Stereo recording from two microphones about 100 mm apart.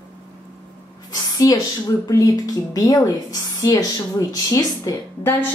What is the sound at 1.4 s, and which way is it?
Speech, 35° left (ahead or behind).